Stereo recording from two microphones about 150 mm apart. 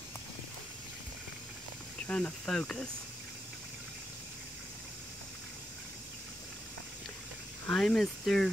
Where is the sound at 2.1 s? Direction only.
5° left (ahead or behind).